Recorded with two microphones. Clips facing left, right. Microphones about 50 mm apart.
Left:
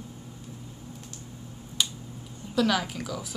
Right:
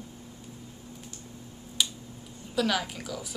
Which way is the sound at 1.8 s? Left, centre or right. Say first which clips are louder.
Even; centre.